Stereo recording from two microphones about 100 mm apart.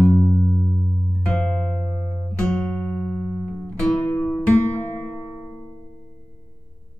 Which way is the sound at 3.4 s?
10° left (ahead or behind).